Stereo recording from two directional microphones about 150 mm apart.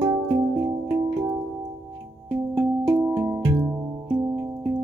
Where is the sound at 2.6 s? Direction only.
20° right (ahead or behind).